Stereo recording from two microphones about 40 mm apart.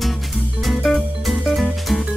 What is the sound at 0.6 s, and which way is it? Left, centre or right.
Music, centre.